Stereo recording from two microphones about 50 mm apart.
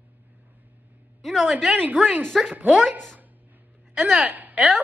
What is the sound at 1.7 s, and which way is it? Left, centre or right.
Speech, right.